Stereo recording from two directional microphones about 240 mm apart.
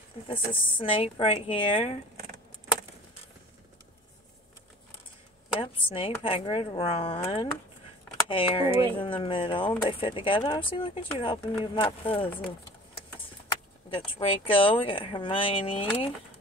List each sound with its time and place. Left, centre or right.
0.3 s speech: left
5.6 s speech: left
13.8 s speech: left